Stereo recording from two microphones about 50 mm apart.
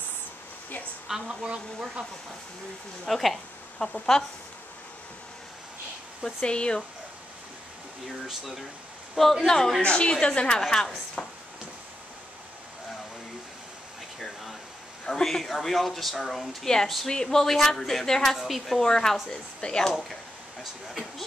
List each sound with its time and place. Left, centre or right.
1.0 s a woman's voice: centre
1.3 s speech: centre
3.1 s a woman's voice: centre
3.8 s speech: left
6.2 s speech: centre
8.3 s a woman's voice: centre
9.8 s speech: left
15.0 s a woman's voice: centre
18.9 s speech: centre